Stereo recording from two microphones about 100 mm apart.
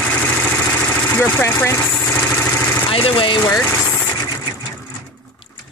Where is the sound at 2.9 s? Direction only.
65° left (ahead or behind).